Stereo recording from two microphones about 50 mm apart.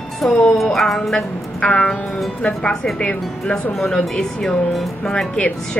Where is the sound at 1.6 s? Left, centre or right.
Centre.